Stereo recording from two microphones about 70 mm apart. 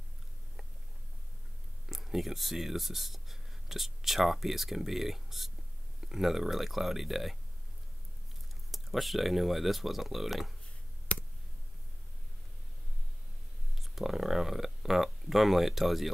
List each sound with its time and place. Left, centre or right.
1.9 s speech: centre
8.7 s speech: centre
11.1 s a sound: centre
13.7 s speech: centre